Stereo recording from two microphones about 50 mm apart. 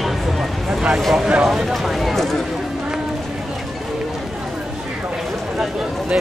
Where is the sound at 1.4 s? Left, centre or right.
Centre.